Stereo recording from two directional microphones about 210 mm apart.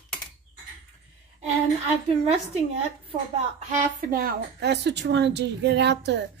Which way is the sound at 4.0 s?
45° right (ahead or behind).